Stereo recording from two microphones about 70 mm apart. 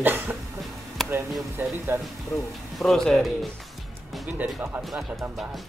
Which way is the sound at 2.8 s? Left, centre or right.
Centre.